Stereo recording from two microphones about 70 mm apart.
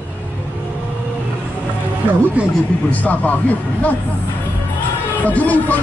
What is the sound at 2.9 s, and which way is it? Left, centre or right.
A man's voice, left.